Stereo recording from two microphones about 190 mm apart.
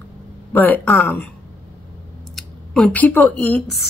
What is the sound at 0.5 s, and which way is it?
Speech, 10° left (ahead or behind).